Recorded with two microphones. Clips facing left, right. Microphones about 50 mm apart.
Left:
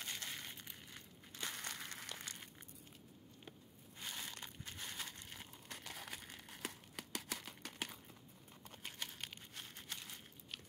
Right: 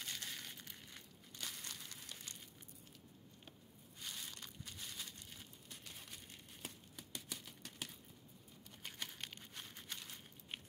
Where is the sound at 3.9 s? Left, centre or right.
Left.